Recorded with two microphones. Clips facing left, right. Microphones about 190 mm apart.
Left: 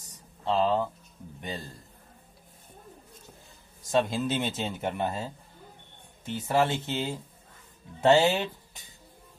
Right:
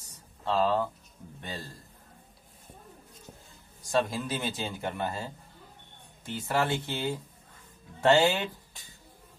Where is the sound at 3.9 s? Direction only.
25° left (ahead or behind).